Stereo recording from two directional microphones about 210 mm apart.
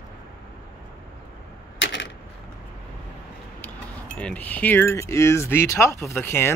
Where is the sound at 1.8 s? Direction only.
65° left (ahead or behind).